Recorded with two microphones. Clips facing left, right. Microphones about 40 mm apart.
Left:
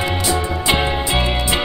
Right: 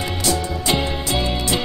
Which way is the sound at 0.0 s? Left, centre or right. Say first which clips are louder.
Left 3 dB; left.